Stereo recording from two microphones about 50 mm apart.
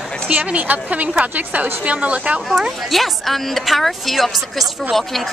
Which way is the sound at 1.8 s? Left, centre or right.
Right.